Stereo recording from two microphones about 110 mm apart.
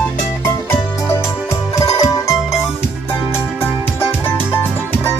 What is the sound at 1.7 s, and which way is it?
Music, 30° left (ahead or behind).